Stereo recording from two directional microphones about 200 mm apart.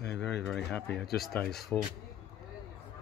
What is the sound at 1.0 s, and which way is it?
Speech, 50° left (ahead or behind).